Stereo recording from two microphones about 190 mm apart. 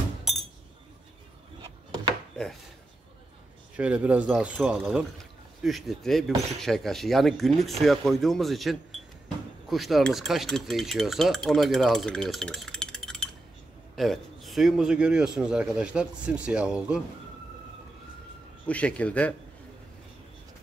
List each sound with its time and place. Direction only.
0.2 s glass: centre (ahead or behind)
1.6 s wood: 20° right (ahead or behind)
3.7 s speech: 5° right (ahead or behind)
4.3 s cutlery: centre (ahead or behind)
18.7 s speech: 5° left (ahead or behind)